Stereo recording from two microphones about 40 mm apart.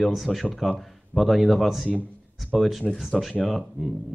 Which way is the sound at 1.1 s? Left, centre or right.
Left.